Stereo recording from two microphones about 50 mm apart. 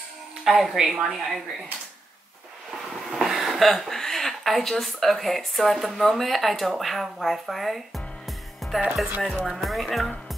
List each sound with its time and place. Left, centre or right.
0.5 s speech: centre
3.0 s speech: centre
8.3 s music: centre
9.5 s speech: centre